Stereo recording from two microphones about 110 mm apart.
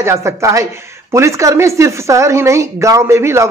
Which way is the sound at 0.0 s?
25° right (ahead or behind).